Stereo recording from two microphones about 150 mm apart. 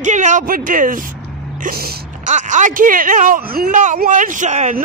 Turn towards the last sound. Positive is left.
turn(degrees=-50)  # may be behind; listen again after turning